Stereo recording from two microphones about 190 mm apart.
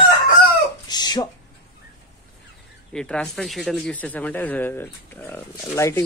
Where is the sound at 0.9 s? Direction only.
20° left (ahead or behind).